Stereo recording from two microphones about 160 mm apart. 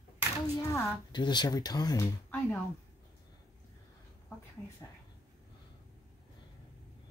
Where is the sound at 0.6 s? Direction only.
25° left (ahead or behind).